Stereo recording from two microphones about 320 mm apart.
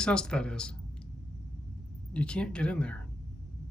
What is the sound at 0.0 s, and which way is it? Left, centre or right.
Speech, centre.